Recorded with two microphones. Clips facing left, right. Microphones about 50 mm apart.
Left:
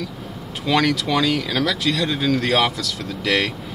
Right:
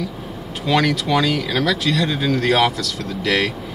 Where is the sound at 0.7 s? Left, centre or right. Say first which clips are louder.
Right 1 dB; centre.